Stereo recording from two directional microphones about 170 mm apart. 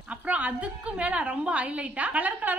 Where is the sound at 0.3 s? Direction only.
10° right (ahead or behind).